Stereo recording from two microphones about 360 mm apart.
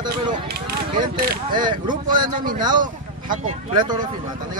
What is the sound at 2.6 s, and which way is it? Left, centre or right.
Speech, centre.